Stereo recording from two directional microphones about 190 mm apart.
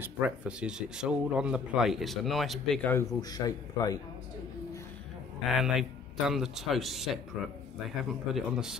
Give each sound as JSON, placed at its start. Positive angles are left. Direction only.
{"t": 0.0, "sound": "speech", "side_deg": -5}
{"t": 3.2, "sound": "speech", "side_deg": 20}
{"t": 5.6, "sound": "speech", "side_deg": 0}